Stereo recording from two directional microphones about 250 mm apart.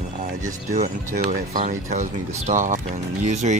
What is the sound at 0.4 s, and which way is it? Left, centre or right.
Speech, right.